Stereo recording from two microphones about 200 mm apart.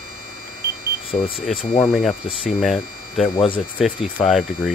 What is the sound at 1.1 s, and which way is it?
Speech, 35° left (ahead or behind).